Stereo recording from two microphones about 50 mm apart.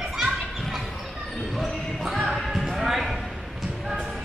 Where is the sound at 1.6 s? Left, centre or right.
Centre.